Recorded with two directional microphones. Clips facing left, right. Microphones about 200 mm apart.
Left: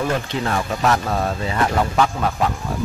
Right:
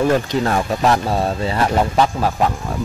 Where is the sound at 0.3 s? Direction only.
40° right (ahead or behind).